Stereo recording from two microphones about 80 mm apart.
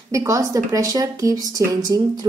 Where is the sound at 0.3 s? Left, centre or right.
Right.